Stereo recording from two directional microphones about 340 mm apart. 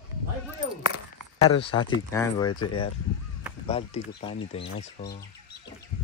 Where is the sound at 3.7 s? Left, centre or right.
Centre.